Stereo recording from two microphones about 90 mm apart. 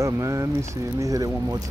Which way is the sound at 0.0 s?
35° right (ahead or behind).